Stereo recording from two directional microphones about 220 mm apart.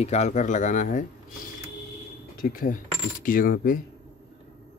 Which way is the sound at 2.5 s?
40° left (ahead or behind).